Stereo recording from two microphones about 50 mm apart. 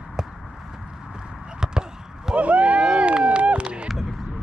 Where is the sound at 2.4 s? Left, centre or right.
Right.